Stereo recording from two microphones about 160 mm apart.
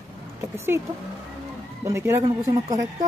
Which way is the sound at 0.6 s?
15° right (ahead or behind).